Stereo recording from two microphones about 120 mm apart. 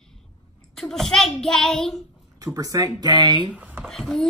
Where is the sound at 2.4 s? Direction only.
30° right (ahead or behind).